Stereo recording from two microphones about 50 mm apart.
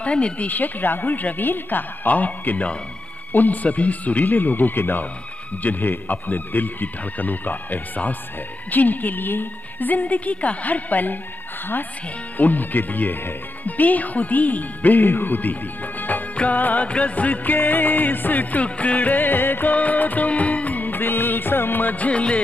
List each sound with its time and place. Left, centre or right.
0.0 s speech: left
0.5 s music: left
12.4 s music: left
19.7 s music of bollywood: left